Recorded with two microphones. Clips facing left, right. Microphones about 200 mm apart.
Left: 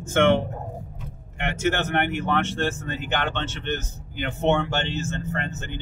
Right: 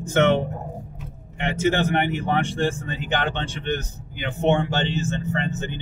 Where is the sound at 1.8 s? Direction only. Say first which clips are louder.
Right 2 dB; 15° right (ahead or behind).